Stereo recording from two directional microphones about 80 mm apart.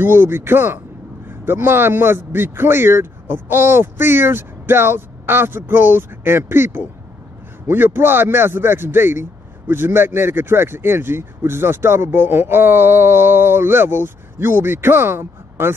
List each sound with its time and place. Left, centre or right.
0.0 s a man's voice: right